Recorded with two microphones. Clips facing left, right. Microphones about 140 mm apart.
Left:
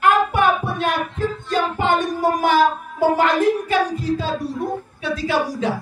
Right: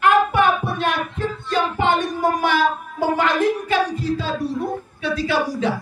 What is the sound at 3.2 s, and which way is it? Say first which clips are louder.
A woman's voice: left 2 dB; 40° left (ahead or behind).